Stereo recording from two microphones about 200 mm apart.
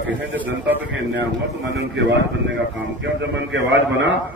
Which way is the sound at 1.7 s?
60° right (ahead or behind).